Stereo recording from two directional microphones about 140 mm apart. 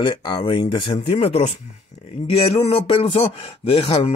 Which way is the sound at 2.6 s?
45° left (ahead or behind).